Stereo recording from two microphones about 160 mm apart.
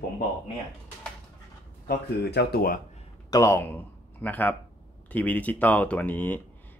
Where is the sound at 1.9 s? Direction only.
80° left.